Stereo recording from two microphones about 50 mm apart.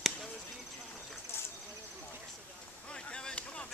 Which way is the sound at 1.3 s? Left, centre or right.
Left.